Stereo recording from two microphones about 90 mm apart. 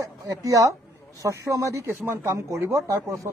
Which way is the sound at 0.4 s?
35° right (ahead or behind).